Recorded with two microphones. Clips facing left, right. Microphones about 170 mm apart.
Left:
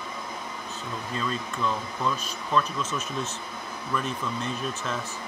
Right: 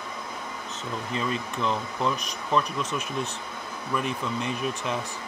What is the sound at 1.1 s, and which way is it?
Speech, 15° right (ahead or behind).